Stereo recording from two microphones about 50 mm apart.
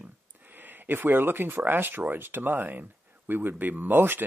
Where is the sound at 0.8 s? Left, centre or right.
Right.